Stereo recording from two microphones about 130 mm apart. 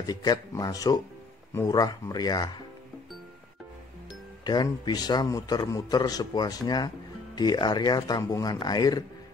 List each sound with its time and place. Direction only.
0.0 s a man's voice: 30° left (ahead or behind)
4.5 s a man's voice: 30° left (ahead or behind)